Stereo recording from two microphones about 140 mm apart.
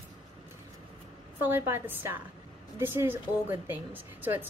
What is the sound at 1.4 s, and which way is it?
A woman's voice, 15° right (ahead or behind).